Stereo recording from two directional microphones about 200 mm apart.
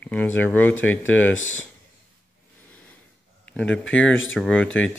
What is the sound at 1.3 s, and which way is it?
Speech, 80° left.